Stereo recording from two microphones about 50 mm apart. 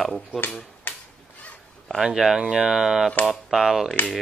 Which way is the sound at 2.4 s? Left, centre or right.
Right.